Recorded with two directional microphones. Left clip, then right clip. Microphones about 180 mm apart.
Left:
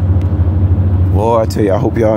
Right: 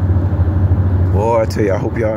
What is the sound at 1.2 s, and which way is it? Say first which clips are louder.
Speech: left 2 dB; 20° left (ahead or behind).